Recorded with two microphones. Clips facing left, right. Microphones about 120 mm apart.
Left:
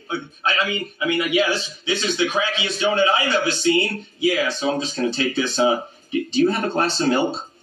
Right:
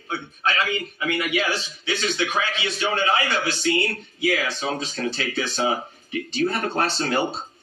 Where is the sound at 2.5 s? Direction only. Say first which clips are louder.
Left 5 dB; 20° left (ahead or behind).